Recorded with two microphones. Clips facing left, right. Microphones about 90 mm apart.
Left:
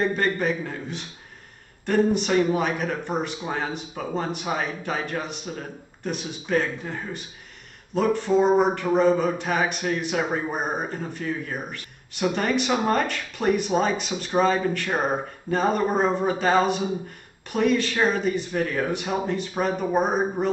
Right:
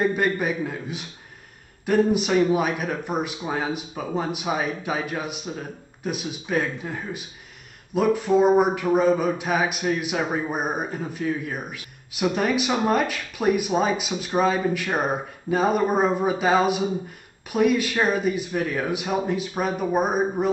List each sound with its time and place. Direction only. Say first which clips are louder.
0.0 s speech: right 1 dB; 10° right (ahead or behind)